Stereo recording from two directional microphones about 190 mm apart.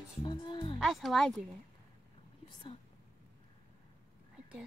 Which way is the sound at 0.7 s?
Centre (ahead or behind).